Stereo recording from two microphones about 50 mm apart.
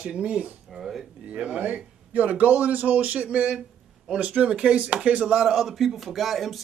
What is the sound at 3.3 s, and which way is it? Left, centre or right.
Speech, centre.